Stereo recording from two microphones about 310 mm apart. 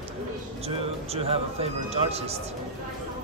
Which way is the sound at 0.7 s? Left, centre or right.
Centre.